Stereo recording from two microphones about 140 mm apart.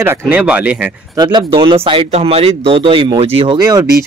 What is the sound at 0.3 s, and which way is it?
Speech, 10° right (ahead or behind).